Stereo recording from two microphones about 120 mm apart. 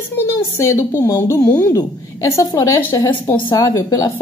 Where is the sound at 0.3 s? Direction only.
25° left (ahead or behind).